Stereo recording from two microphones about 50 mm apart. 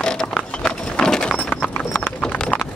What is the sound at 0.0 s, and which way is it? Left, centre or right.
Clip-clop, centre.